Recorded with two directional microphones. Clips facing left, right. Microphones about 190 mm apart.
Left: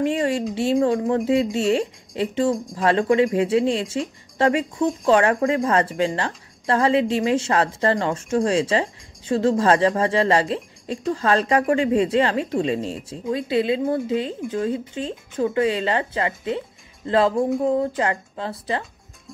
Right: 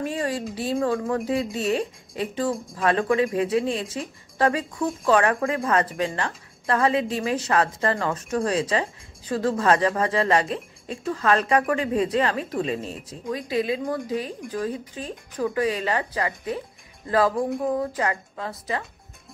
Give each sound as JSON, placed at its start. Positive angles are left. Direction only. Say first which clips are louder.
{"t": 0.0, "sound": "speech", "louder": "left 6 dB", "side_deg": 25}
{"t": 17.6, "sound": "speech", "louder": "left 4 dB", "side_deg": 25}